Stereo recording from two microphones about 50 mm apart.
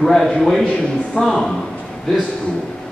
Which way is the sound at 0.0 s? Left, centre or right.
Centre.